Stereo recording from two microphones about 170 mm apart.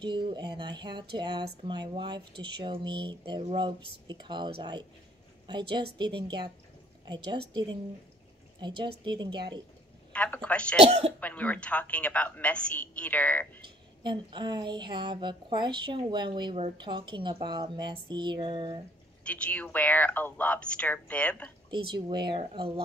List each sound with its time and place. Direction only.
0.0 s a woman's voice: 25° right (ahead or behind)
9.0 s a woman's voice: 25° right (ahead or behind)
10.1 s speech: 10° left (ahead or behind)
10.8 s speech: 40° right (ahead or behind)
11.1 s speech: 10° left (ahead or behind)
14.0 s a woman's voice: 25° right (ahead or behind)
19.2 s speech: 5° left (ahead or behind)
21.6 s a woman's voice: 30° right (ahead or behind)